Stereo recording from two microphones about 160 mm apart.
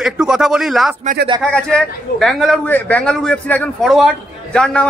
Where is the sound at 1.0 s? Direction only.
65° right (ahead or behind).